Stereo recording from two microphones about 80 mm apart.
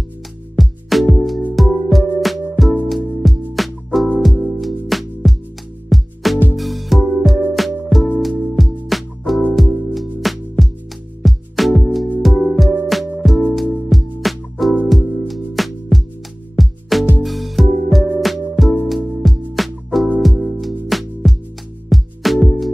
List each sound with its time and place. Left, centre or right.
0.6 s music: centre